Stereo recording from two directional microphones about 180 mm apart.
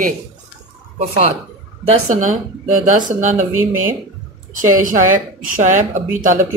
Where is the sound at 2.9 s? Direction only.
45° right (ahead or behind).